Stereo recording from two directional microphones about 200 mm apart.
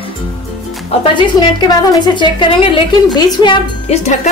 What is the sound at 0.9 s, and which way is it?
Speech, 25° left (ahead or behind).